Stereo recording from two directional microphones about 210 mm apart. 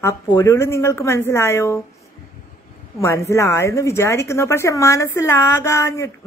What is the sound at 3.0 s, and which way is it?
A woman's voice, 15° left (ahead or behind).